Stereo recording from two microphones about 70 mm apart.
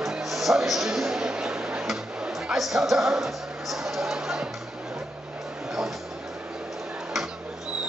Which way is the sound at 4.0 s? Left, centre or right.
Centre.